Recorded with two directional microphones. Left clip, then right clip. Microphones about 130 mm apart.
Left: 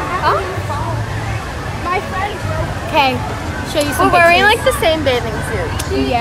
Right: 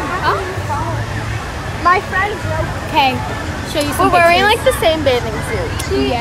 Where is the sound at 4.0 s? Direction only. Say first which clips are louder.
Left 1 dB; 5° left (ahead or behind).